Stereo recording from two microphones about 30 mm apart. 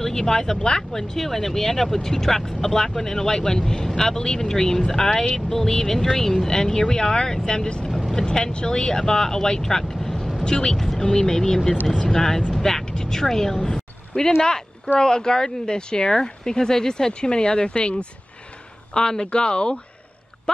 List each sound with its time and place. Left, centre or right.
0.0 s speech: centre
10.4 s speech: left
10.8 s speech: centre
12.8 s speech: left
18.9 s speech: left
20.5 s a sound: left